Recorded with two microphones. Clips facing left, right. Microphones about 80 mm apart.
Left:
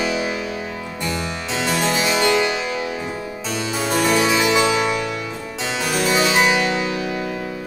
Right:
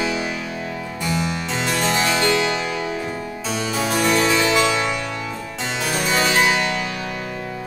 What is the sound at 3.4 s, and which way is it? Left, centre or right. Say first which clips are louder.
Harpsichord: even; centre.